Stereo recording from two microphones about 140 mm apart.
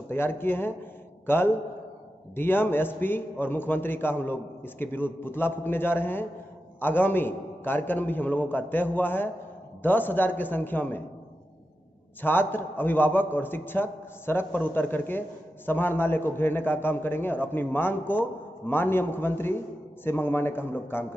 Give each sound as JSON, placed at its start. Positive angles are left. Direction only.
{"t": 0.1, "sound": "a man's voice", "side_deg": 15}
{"t": 12.2, "sound": "a man's voice", "side_deg": 15}